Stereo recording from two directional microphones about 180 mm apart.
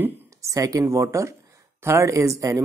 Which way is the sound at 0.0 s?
15° right (ahead or behind).